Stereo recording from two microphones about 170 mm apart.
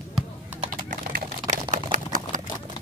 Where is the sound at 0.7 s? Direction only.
50° right (ahead or behind).